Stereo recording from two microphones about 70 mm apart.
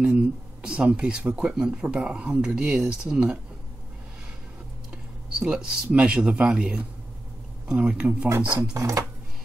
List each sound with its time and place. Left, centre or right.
0.1 s speech: centre
4.9 s speech: centre
8.7 s speech: right